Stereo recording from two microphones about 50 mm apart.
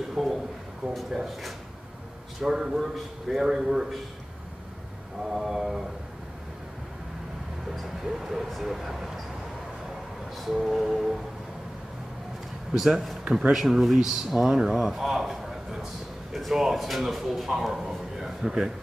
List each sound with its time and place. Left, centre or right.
0.1 s a sound: centre
0.9 s a man's voice: centre
5.2 s speech: centre
7.7 s speech: centre
10.3 s speech: centre
12.7 s a man's voice: centre